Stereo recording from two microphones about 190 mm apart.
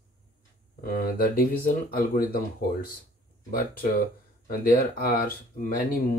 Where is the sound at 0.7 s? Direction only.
50° left (ahead or behind).